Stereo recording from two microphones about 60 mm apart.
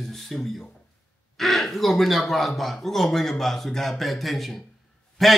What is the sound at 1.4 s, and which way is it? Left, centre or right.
Speech, centre.